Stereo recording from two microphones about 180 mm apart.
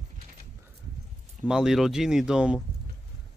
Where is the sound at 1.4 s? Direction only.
5° right (ahead or behind).